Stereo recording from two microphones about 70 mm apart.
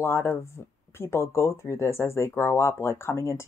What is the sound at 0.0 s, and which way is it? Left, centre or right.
Speech, left.